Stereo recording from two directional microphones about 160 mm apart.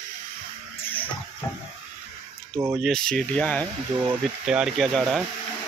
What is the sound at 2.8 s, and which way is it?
Speech, 5° left (ahead or behind).